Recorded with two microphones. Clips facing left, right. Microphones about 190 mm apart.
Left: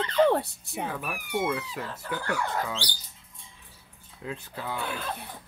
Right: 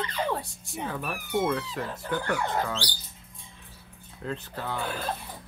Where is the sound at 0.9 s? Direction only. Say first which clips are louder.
Right 4 dB; 10° left (ahead or behind).